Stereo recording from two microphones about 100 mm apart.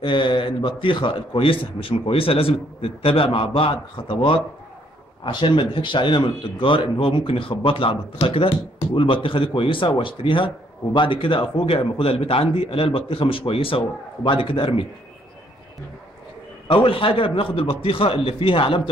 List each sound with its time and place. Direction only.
0.0 s speech: 55° left (ahead or behind)
16.6 s speech: 65° left (ahead or behind)